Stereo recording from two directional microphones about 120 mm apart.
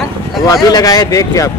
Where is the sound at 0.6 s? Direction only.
30° left (ahead or behind).